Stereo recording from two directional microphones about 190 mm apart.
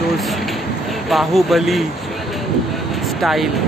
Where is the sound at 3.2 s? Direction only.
Centre (ahead or behind).